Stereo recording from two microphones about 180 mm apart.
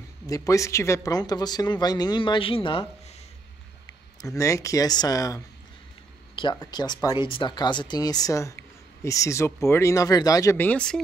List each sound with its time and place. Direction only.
0.3 s speech: 20° left (ahead or behind)
4.2 s speech: 15° left (ahead or behind)
6.5 s speech: 20° left (ahead or behind)